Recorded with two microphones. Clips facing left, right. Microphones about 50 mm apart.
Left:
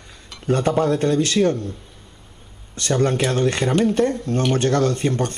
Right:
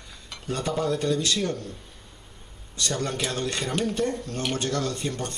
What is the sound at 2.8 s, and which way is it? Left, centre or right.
Speech, left.